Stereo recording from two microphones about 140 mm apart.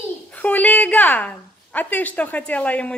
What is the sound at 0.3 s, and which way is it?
A woman's voice, 10° left (ahead or behind).